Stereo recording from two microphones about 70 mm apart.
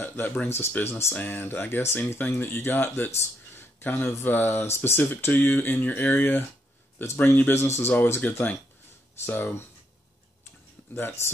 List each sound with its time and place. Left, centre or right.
0.0 s speech: left